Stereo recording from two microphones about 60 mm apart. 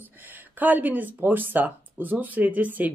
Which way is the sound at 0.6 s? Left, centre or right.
Right.